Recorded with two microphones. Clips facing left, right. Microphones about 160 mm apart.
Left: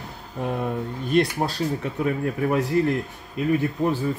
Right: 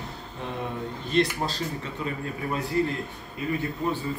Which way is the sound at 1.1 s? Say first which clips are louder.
Left 3 dB; 55° left (ahead or behind).